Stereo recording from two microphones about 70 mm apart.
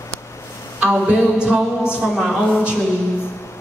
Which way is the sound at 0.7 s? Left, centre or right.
Centre.